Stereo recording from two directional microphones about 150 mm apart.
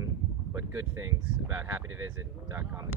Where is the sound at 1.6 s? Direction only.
15° right (ahead or behind).